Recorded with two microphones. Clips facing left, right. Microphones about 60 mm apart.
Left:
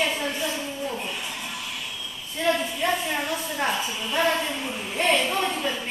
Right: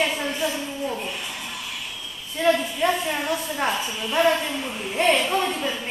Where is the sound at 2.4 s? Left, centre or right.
Centre.